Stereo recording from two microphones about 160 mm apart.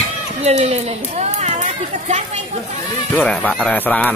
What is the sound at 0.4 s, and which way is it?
Speech, 40° right (ahead or behind).